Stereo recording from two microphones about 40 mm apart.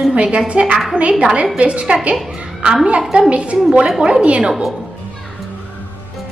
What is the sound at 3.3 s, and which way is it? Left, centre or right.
Speech, right.